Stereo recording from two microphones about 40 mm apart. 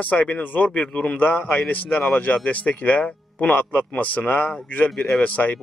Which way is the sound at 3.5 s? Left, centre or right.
Left.